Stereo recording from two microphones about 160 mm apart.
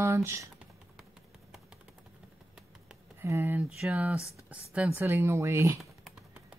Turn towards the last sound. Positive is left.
turn(degrees=-20)  # may be behind; listen again after turning